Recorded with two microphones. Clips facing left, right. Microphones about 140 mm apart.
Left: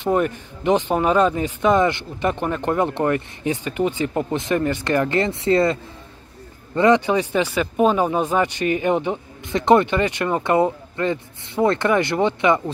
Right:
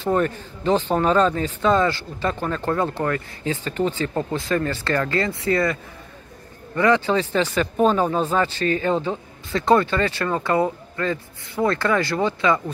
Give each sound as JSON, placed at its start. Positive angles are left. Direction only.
{"t": 0.0, "sound": "speech", "side_deg": 15}